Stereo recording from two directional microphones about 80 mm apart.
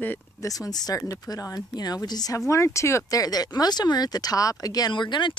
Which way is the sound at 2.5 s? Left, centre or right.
Left.